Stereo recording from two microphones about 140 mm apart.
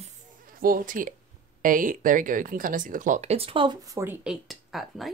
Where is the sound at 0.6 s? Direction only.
80° right; by 3.7 s 40° right (ahead or behind).